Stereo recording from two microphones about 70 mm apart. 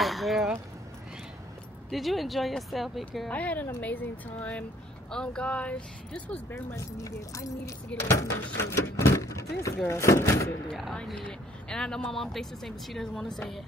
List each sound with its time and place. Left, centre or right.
0.0 s chink: centre
1.9 s speech: centre
3.3 s speech: left
6.5 s speech: left
11.2 s speech: centre